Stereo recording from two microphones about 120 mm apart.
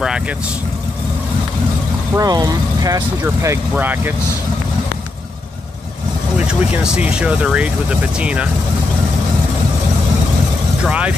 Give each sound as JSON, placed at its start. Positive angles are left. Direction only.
{"t": 2.1, "sound": "speech", "side_deg": -30}
{"t": 3.7, "sound": "speech", "side_deg": -15}
{"t": 6.3, "sound": "speech", "side_deg": -10}
{"t": 10.8, "sound": "speech", "side_deg": -10}